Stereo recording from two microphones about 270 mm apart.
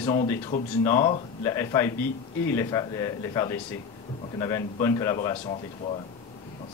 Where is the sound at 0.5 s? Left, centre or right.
Left.